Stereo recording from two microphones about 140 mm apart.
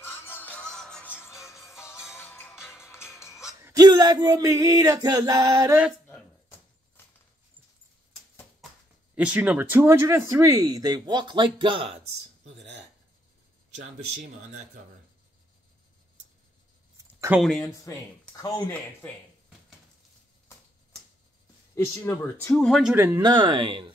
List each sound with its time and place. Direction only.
0.0 s music: 15° left (ahead or behind)
3.6 s male singing: 25° right (ahead or behind)
6.0 s a sound: 10° left (ahead or behind)
9.1 s speech: 10° right (ahead or behind); by 12.0 s 40° right (ahead or behind)
13.7 s speech: 60° right (ahead or behind)
17.4 s speech: centre (ahead or behind)
21.7 s speech: 15° left (ahead or behind)
22.6 s speech: centre (ahead or behind)
22.9 s speech: 15° right (ahead or behind)
23.2 s speech: 30° right (ahead or behind)